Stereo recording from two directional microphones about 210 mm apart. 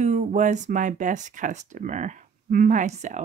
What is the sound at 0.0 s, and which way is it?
Speech, 35° right (ahead or behind).